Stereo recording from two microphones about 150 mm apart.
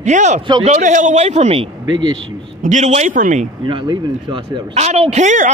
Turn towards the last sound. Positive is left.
turn(degrees=-55)  # may be behind; listen again after turning